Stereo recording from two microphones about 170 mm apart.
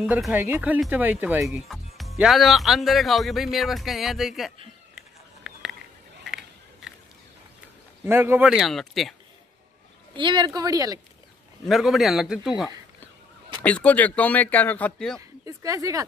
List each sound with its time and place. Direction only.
0.0 s speech: centre (ahead or behind)
0.3 s speech: 10° right (ahead or behind)
5.4 s a sound: centre (ahead or behind)
8.0 s speech: 15° right (ahead or behind)
10.1 s speech: 30° right (ahead or behind)
11.6 s speech: centre (ahead or behind)
13.6 s speech: 10° left (ahead or behind)
15.1 s speech: 20° right (ahead or behind)